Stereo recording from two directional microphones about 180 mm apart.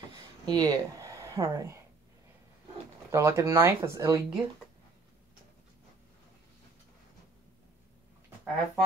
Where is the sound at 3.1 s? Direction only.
15° right (ahead or behind).